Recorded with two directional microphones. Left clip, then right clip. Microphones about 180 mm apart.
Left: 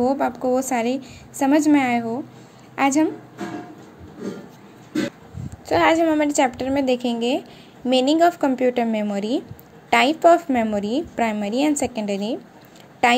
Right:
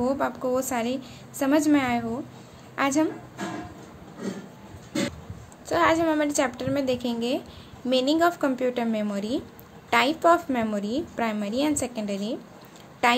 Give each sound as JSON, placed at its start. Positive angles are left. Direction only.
{"t": 0.0, "sound": "a woman's voice", "side_deg": 15}
{"t": 5.7, "sound": "a woman's voice", "side_deg": 20}